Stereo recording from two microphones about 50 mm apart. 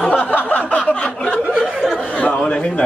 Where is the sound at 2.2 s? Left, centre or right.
Left.